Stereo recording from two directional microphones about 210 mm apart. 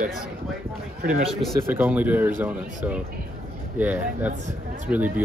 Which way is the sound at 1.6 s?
10° right (ahead or behind).